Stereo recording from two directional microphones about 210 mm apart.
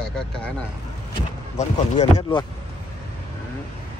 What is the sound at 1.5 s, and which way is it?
Speech, 30° left (ahead or behind).